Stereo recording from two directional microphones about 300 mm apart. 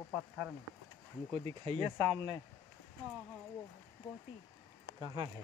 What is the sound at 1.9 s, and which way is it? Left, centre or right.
Speech, centre.